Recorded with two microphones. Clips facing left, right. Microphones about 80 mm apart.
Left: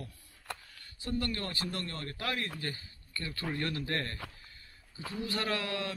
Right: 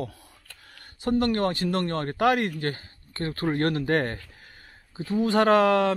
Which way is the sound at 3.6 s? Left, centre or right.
Right.